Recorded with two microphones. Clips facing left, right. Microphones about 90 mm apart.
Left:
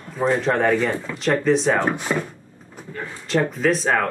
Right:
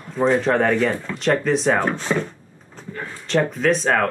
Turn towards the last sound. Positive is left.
turn(degrees=0)  # may be behind; listen again after turning